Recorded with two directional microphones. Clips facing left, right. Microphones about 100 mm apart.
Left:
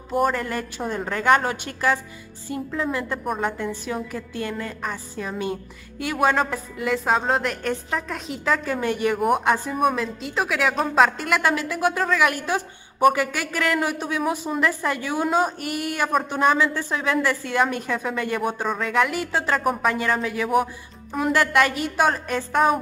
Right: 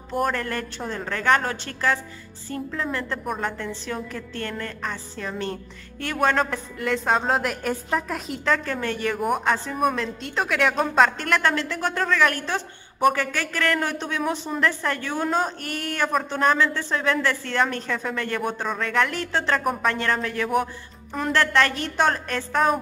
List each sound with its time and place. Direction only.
0.1 s speech: 5° left (ahead or behind)
9.8 s speech: 5° left (ahead or behind)